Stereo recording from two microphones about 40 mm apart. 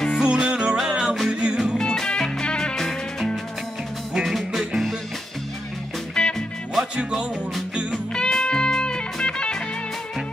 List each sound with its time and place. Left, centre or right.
0.2 s music: right
1.8 s music: centre
4.2 s music: centre
6.2 s music: centre
8.1 s music: centre